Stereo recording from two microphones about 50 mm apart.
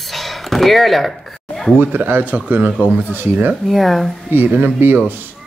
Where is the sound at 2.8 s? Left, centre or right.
Right.